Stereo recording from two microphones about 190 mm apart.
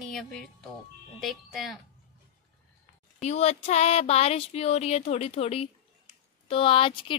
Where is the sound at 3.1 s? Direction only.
35° left (ahead or behind).